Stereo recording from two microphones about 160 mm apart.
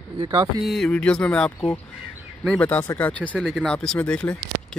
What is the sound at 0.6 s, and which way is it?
Speech, centre (ahead or behind).